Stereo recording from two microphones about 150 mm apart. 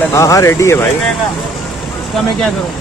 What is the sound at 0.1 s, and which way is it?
Speech, 20° left (ahead or behind).